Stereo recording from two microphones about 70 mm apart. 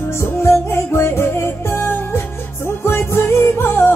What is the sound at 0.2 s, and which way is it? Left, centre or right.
Music, left.